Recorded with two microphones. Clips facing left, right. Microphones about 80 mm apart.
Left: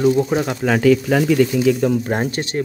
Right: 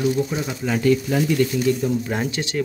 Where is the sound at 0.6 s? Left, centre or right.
Left.